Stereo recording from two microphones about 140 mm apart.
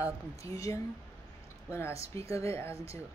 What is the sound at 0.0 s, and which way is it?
Speech, 25° left (ahead or behind).